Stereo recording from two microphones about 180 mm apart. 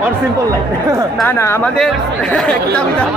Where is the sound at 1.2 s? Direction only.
10° left (ahead or behind).